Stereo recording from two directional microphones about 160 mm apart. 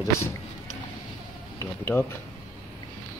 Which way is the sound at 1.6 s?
15° left (ahead or behind).